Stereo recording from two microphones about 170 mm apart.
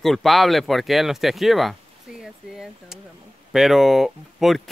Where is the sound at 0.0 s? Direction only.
Centre (ahead or behind).